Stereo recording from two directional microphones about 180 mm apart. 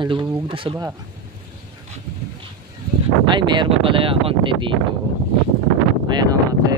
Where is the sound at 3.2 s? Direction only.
25° right (ahead or behind).